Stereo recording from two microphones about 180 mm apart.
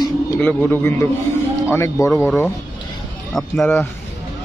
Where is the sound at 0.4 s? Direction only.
10° left (ahead or behind).